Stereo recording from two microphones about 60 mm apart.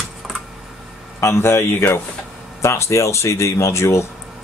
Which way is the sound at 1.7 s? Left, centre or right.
Left.